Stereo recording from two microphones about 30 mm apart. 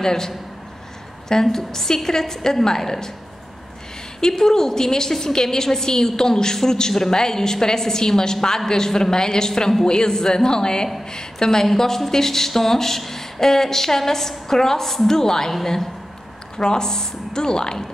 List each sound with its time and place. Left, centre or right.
0.0 s a woman's voice: centre
1.3 s speech: centre
4.3 s a woman's voice: centre